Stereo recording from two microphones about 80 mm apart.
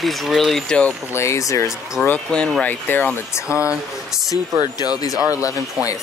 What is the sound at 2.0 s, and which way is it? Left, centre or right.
Speech, centre.